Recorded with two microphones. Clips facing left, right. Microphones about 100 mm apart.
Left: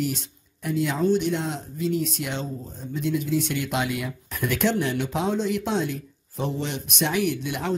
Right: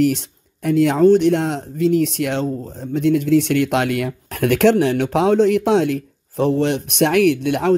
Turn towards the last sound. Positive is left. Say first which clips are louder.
# right 10 dB
turn(degrees=-65)  # may be behind; listen again after turning